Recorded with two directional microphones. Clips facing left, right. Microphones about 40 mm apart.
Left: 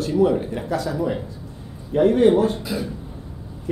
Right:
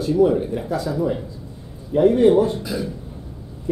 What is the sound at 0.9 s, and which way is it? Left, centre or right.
Speech, left.